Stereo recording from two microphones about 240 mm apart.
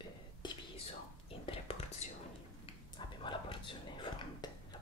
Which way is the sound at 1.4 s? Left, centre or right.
Left.